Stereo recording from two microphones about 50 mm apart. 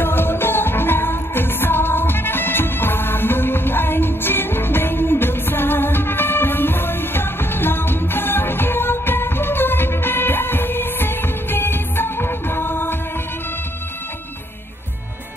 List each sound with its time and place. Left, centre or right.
0.0 s music: left